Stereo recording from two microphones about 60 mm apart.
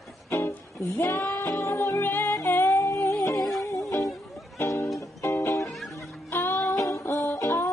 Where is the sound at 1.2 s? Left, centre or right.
Left.